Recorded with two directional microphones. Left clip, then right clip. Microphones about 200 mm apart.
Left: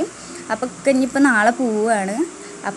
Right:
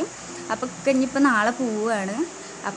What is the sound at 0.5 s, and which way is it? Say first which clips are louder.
Speech: left 4 dB; 15° left (ahead or behind).